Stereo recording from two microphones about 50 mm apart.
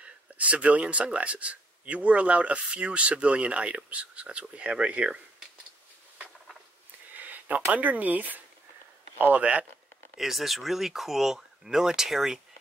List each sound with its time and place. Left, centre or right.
0.0 s speech: right
7.2 s a sound: right
7.7 s speech: right
10.1 s speech: centre